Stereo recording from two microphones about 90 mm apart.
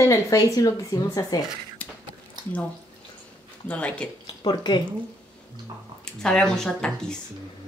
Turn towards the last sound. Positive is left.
turn(degrees=10)  # may be behind; listen again after turning